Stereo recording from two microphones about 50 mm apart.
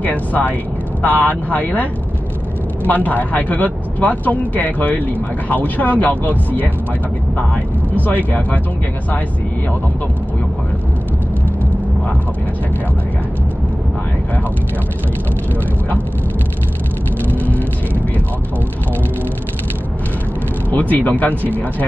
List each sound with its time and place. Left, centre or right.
0.0 s speech: left
17.3 s vehicle: left
20.9 s speech: left